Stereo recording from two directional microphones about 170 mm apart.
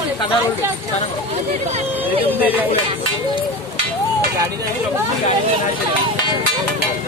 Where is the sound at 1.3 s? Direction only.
35° right (ahead or behind).